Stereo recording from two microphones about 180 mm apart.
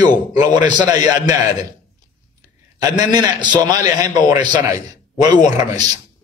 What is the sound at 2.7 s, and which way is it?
A man's voice, 20° right (ahead or behind).